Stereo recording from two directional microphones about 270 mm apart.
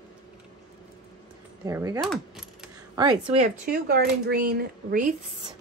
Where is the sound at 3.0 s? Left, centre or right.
Centre.